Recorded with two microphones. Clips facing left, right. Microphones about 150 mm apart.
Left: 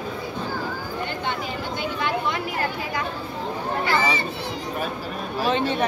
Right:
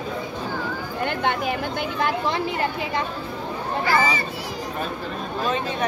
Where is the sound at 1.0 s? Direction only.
60° right (ahead or behind); by 2.3 s 45° right (ahead or behind).